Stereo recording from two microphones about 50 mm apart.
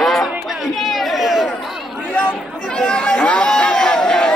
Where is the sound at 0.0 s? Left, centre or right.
Centre.